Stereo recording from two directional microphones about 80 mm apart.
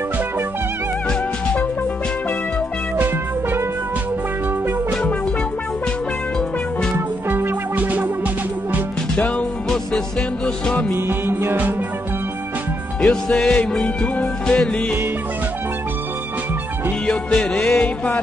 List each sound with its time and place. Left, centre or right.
3.0 s music: right
7.2 s music: right
9.1 s music: centre
11.0 s music: right
13.0 s music: centre
17.0 s music: centre